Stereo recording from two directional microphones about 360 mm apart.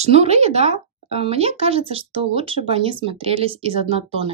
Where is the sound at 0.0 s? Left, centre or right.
Centre.